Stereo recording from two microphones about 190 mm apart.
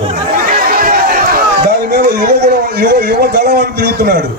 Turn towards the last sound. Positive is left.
turn(degrees=-55)  # may be behind; listen again after turning